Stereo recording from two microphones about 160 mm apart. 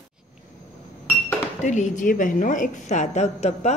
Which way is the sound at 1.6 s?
50° left (ahead or behind).